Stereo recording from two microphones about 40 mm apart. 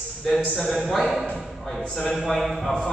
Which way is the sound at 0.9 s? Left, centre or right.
Centre.